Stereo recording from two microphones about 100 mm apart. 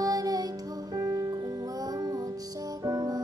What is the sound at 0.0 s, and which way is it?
Music, 35° right (ahead or behind).